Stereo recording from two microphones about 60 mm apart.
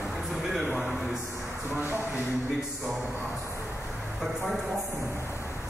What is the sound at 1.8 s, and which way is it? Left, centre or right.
Speech, right.